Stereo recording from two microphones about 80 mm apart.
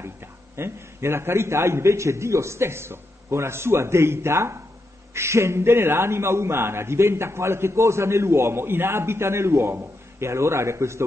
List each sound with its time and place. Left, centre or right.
0.0 s a man's voice: right